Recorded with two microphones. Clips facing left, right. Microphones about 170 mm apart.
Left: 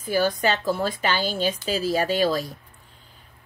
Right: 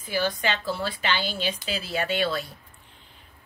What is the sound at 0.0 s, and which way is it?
A woman's voice, 45° left (ahead or behind).